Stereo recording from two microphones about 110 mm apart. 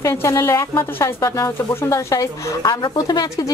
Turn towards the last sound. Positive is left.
turn(degrees=35)  # may be behind; listen again after turning